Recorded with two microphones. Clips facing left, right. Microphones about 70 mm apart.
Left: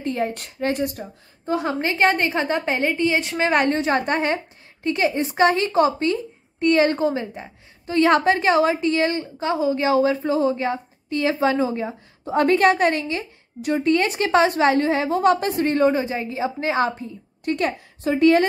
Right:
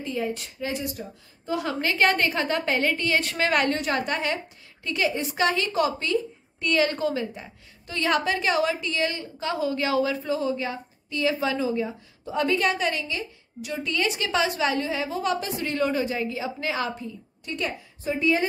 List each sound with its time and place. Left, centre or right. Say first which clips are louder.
0.0 s speech: left 4 dB; left
1.4 s a woman's voice: left 4 dB; left
17.5 s a woman's voice: left 8 dB; left